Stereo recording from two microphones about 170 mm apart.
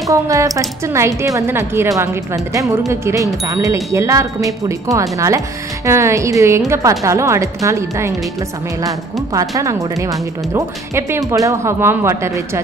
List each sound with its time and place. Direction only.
0.1 s speech: 20° right (ahead or behind)